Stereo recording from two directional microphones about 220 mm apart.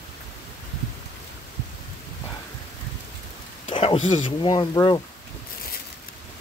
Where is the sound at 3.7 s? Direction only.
25° left (ahead or behind).